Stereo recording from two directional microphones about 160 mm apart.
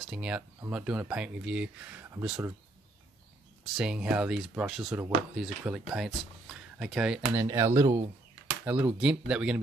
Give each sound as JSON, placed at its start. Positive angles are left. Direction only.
{"t": 0.0, "sound": "speech", "side_deg": -5}
{"t": 3.7, "sound": "speech", "side_deg": -5}
{"t": 7.3, "sound": "speech", "side_deg": -20}